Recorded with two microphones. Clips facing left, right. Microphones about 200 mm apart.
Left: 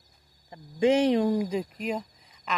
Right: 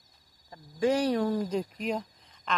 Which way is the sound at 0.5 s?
20° left (ahead or behind).